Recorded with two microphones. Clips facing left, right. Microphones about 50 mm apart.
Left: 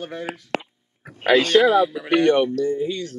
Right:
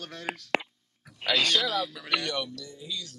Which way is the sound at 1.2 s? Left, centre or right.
Left.